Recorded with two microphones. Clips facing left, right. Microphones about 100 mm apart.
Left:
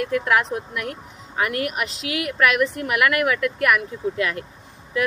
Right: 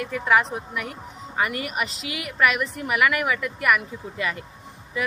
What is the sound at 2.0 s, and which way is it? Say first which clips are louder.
Speech: left 6 dB; 60° left (ahead or behind).